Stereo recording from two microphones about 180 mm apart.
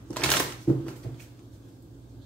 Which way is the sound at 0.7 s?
5° left (ahead or behind).